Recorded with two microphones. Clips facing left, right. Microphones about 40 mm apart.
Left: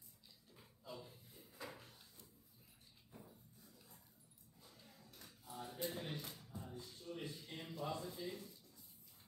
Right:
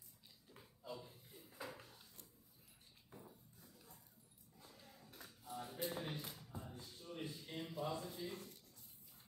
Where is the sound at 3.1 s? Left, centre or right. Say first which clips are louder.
Right 1 dB; centre.